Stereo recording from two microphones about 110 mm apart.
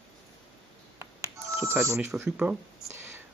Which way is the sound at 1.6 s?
25° right (ahead or behind).